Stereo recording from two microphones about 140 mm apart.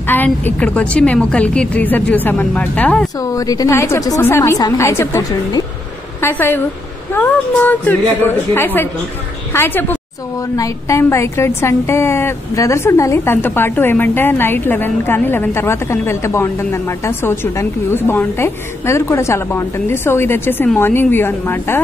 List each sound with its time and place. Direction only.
0.0 s a woman's voice: 15° left (ahead or behind)
3.2 s a woman's voice: 25° left (ahead or behind)